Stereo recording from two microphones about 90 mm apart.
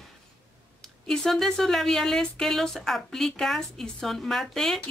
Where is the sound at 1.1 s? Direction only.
5° left (ahead or behind).